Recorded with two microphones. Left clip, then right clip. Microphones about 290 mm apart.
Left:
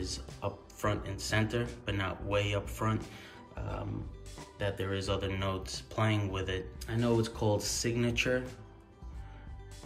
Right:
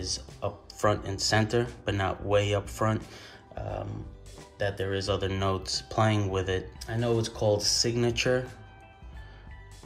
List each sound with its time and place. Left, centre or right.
0.0 s speech: centre
0.7 s speech: centre
4.4 s speech: centre